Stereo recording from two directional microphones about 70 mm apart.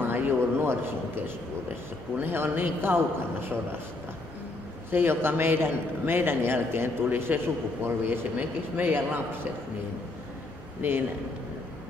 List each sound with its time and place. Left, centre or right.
0.0 s a sound: right
2.1 s a man's voice: right
4.9 s a man's voice: right
10.8 s a man's voice: right